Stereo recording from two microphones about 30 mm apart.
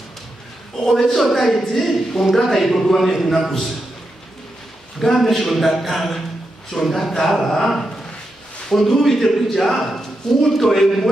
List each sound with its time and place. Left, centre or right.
0.8 s a man's voice: centre
1.1 s a man's voice: centre
5.0 s speech: centre
6.7 s a man's voice: centre